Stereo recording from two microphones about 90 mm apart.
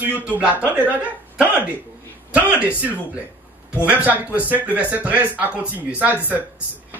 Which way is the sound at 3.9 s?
15° right (ahead or behind).